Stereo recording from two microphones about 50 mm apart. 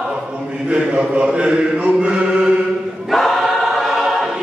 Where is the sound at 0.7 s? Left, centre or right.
Right.